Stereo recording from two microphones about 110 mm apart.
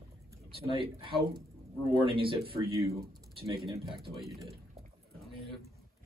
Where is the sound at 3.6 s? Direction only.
Centre (ahead or behind).